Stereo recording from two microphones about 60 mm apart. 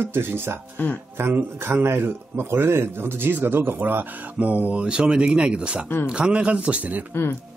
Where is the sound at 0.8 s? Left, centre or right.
Left.